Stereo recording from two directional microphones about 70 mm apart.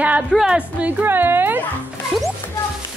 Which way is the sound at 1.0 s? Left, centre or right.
Right.